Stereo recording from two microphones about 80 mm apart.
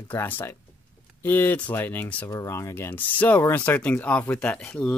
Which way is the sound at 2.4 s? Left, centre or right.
Left.